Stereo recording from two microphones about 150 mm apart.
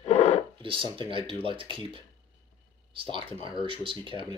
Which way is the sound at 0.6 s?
35° right (ahead or behind).